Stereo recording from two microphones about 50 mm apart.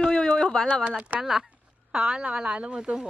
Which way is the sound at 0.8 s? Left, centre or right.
Right.